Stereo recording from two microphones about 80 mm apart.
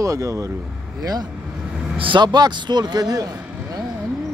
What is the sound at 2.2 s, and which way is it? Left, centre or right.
Speech, right.